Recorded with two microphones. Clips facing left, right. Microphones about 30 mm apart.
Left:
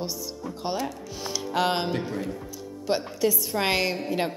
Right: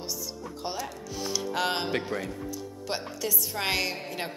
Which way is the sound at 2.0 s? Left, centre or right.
Right.